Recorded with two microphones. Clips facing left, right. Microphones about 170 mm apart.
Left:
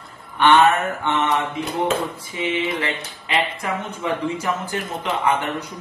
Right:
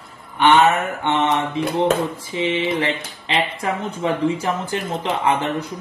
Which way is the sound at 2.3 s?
30° right (ahead or behind).